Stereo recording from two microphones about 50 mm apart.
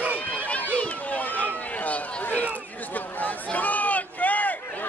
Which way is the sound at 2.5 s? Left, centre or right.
Left.